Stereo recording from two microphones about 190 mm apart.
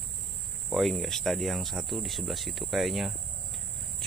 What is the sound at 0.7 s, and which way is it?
Speech, centre (ahead or behind).